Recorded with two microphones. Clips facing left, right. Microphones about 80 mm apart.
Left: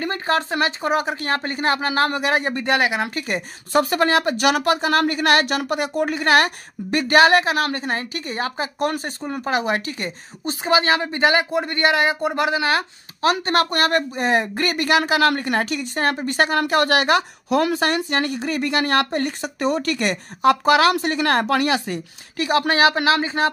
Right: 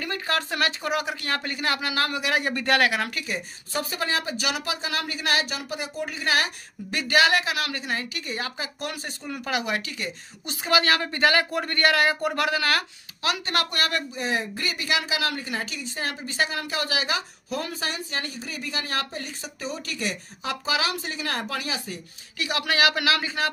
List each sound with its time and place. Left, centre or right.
0.0 s speech: left
3.3 s speech: left
13.2 s speech: left
22.4 s speech: left